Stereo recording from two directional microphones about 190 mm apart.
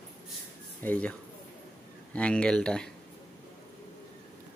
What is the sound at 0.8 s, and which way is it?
Speech, 10° left (ahead or behind).